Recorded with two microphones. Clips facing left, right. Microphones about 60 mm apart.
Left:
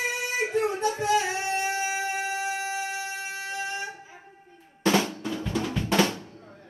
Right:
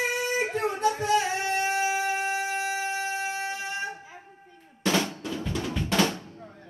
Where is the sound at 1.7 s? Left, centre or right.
Right.